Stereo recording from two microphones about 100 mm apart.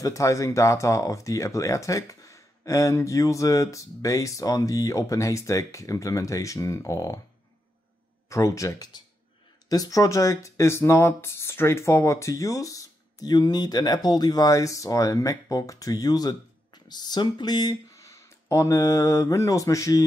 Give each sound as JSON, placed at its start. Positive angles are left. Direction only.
{"t": 0.0, "sound": "speech", "side_deg": 35}
{"t": 8.3, "sound": "speech", "side_deg": 30}